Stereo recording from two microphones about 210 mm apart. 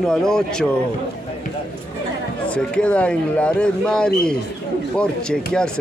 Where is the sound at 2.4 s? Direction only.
5° left (ahead or behind).